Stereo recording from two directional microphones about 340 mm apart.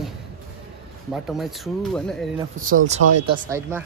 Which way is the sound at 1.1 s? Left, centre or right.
Centre.